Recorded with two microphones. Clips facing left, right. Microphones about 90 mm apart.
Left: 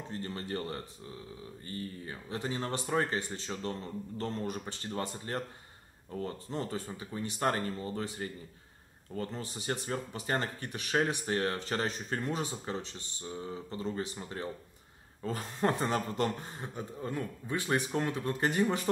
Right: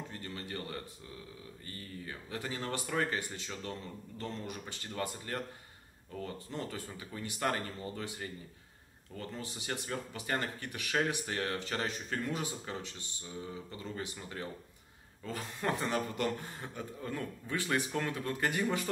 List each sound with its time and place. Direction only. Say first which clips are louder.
0.1 s speech: left 5 dB; 35° left (ahead or behind)
9.3 s speech: left 3 dB; 30° left (ahead or behind)